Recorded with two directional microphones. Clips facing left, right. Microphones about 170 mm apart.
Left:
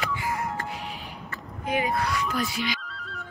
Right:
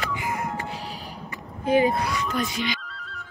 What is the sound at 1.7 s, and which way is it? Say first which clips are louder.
Music: right 7 dB; 30° right (ahead or behind).